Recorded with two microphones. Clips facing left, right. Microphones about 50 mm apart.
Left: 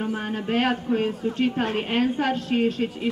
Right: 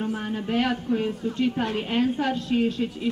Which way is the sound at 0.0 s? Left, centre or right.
Left.